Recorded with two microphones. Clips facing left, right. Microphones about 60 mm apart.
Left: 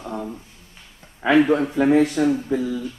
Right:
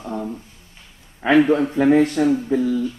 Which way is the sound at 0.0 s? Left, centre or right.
Centre.